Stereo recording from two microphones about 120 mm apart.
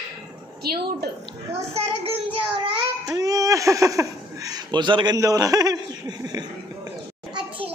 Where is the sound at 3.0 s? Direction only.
30° right (ahead or behind).